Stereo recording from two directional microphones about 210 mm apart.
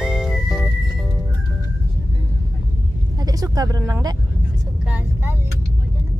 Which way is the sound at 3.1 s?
20° right (ahead or behind).